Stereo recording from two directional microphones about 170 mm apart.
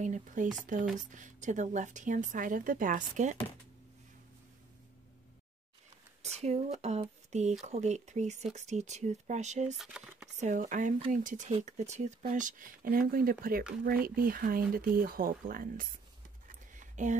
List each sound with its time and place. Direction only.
0.0 s speech: 45° right (ahead or behind)
6.2 s speech: 40° right (ahead or behind)
9.8 s speech: 5° right (ahead or behind)
10.4 s speech: 45° right (ahead or behind)
16.4 s a sound: 50° right (ahead or behind)